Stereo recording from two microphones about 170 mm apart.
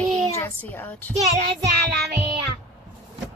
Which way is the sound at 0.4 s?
10° left (ahead or behind).